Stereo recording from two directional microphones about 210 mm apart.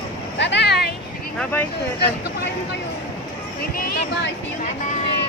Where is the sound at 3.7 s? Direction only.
55° left (ahead or behind).